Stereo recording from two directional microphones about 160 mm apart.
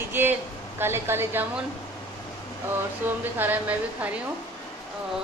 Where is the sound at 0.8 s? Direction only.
15° right (ahead or behind).